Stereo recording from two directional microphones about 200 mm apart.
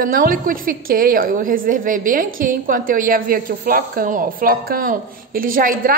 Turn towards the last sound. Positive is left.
turn(degrees=-45)  # may be behind; listen again after turning